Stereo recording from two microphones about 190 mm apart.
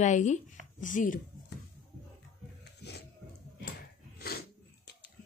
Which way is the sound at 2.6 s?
60° left (ahead or behind).